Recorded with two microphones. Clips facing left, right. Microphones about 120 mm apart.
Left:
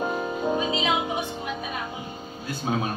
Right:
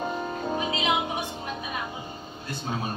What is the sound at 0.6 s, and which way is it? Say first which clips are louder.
Speech: left 2 dB; 25° left (ahead or behind).